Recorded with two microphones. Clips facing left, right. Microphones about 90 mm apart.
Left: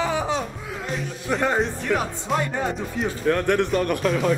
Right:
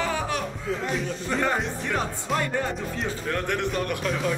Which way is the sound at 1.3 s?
10° left (ahead or behind).